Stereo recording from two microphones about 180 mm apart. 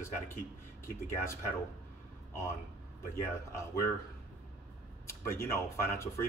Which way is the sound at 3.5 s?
15° left (ahead or behind).